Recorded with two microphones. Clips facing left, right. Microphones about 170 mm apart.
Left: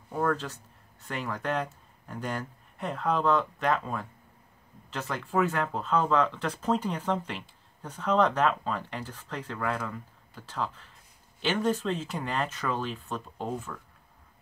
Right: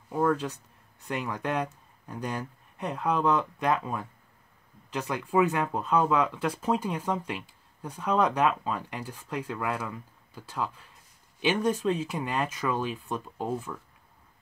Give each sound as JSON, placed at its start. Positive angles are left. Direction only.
{"t": 0.1, "sound": "speech", "side_deg": -10}